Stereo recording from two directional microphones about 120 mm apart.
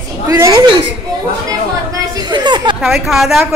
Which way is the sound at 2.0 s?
35° right (ahead or behind).